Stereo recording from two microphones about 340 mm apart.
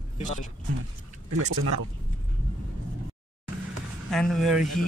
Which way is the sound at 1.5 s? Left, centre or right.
Right.